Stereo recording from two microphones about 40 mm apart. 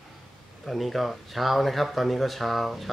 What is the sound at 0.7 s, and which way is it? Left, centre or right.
Speech, centre.